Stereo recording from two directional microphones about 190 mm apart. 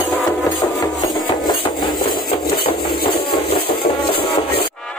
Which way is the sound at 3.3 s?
55° left (ahead or behind).